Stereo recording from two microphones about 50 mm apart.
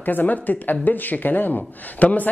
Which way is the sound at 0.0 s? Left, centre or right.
Left.